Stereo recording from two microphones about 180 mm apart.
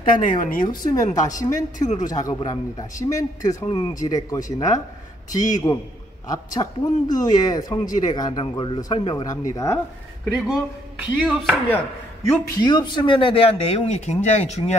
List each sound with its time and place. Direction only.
0.2 s a woman's voice: 45° left (ahead or behind)
0.7 s a man's voice: 20° left (ahead or behind)
10.3 s chopping: centre (ahead or behind)
12.2 s speech: 25° left (ahead or behind)